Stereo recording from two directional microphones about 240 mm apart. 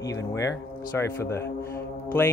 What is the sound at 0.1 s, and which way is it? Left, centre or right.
Speech, centre.